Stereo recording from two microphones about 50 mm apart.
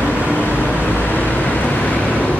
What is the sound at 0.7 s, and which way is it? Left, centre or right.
Vehicle, left.